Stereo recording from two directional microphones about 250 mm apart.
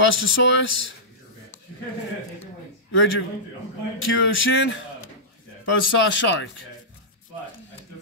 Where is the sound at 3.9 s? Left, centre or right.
Left.